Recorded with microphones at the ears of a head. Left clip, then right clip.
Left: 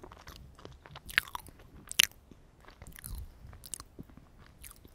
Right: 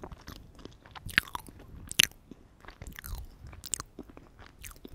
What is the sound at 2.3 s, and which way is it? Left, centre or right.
Biting, right.